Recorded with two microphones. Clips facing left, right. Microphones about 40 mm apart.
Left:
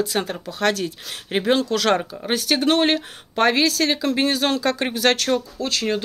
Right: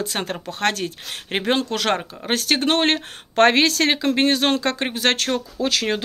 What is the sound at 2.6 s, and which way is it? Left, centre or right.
Speech, right.